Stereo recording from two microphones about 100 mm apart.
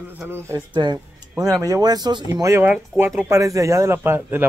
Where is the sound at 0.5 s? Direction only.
50° right (ahead or behind).